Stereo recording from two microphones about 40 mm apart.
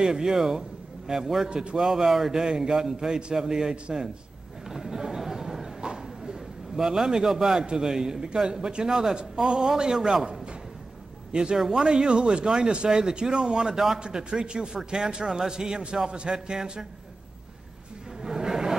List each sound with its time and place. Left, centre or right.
0.0 s a man's voice: centre
1.5 s a man's voice: right
1.8 s speech: centre
4.6 s a sound: centre
6.8 s speech: centre
9.1 s speech: right
11.5 s speech: centre
11.8 s a man's voice: centre
18.2 s a sound: centre